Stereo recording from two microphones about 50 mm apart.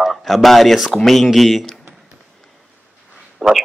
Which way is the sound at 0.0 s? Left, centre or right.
Centre.